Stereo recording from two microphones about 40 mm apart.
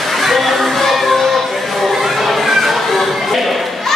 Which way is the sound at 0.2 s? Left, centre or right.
Centre.